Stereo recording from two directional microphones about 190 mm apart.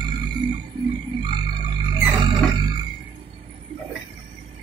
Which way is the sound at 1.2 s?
25° right (ahead or behind).